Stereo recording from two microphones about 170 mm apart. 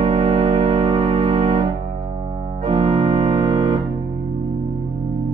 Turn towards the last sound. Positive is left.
turn(degrees=-35)  # may be behind; listen again after turning